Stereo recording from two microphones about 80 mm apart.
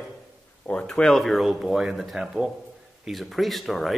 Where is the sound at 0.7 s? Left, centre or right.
Centre.